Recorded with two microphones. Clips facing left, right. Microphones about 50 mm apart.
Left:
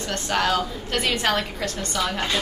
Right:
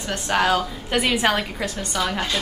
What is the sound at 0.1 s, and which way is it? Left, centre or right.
A woman's voice, centre.